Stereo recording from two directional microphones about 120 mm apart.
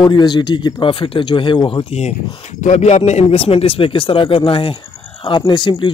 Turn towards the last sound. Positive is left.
turn(degrees=45)  # may be behind; listen again after turning